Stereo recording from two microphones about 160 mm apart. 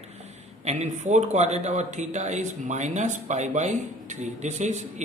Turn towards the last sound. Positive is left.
turn(degrees=-50)  # may be behind; listen again after turning